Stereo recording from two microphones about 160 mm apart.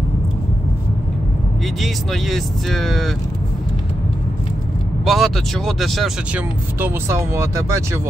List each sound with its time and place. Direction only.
1.8 s speech: centre (ahead or behind)
5.0 s speech: centre (ahead or behind)
6.8 s speech: 15° right (ahead or behind)